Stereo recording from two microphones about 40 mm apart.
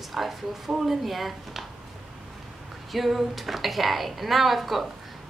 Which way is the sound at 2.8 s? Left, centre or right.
Centre.